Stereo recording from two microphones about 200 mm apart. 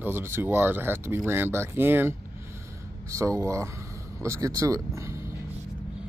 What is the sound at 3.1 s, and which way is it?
Speech, 15° right (ahead or behind).